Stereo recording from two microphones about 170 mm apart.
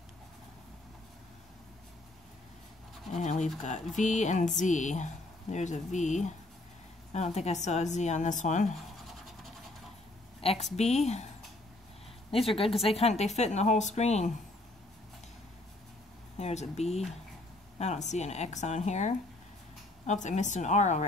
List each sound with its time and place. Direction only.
3.2 s a woman's voice: 45° left (ahead or behind)
10.4 s a woman's voice: 40° left (ahead or behind)
12.3 s a woman's voice: 35° left (ahead or behind)
16.3 s a woman's voice: 40° left (ahead or behind)